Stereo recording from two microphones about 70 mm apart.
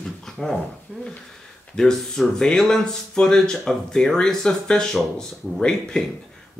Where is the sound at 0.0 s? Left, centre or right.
Centre.